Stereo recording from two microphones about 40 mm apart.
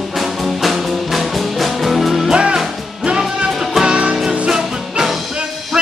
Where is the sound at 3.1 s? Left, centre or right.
Right.